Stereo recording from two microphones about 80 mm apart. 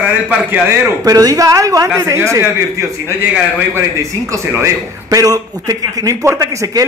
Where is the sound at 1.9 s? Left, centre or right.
Right.